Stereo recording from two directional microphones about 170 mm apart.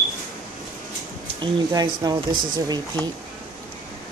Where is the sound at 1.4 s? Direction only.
25° right (ahead or behind).